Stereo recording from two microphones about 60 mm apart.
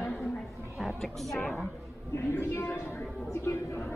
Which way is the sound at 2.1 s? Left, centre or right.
Left.